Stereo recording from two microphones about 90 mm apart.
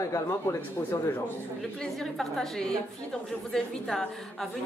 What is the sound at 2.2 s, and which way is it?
A woman's voice, 5° left (ahead or behind).